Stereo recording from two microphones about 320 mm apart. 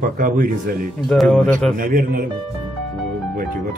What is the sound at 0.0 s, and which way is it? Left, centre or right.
Speech, right.